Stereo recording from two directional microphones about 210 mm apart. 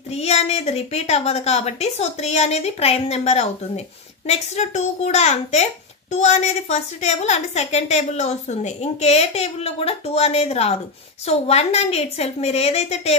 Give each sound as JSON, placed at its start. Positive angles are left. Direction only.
{"t": 0.1, "sound": "a child's voice", "side_deg": 30}